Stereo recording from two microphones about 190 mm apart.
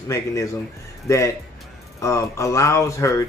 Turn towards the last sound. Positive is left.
turn(degrees=15)  # may be behind; listen again after turning